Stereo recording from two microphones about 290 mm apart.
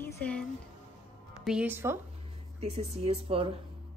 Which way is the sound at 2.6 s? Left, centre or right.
Right.